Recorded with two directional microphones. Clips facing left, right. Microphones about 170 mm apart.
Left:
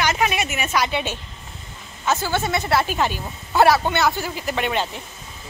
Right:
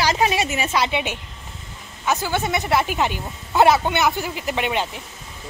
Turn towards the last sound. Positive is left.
turn(degrees=-15)  # may be behind; listen again after turning